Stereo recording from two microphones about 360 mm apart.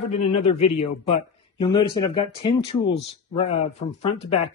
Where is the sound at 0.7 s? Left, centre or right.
Left.